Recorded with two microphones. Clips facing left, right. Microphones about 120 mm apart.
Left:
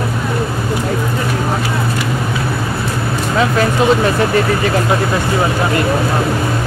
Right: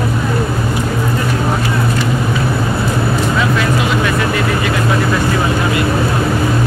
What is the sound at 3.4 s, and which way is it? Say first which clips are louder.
Speech: left 2 dB; 35° left (ahead or behind).